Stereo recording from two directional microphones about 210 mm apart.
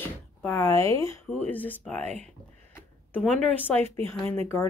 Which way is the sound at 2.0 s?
30° right (ahead or behind).